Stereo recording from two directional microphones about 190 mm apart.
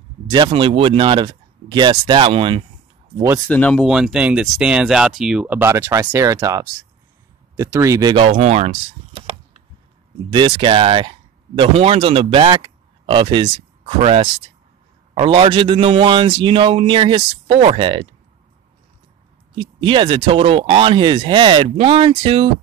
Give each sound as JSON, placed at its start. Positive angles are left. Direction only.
{"t": 0.3, "sound": "a man's voice", "side_deg": -25}
{"t": 3.4, "sound": "speech", "side_deg": 5}
{"t": 8.3, "sound": "speech", "side_deg": -35}
{"t": 10.3, "sound": "a man's voice", "side_deg": -25}
{"t": 19.5, "sound": "a man's voice", "side_deg": -25}